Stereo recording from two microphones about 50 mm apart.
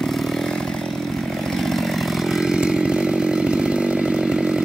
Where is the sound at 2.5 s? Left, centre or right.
Centre.